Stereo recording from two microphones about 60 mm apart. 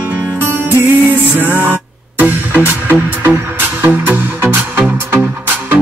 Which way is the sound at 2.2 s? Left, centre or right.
Right.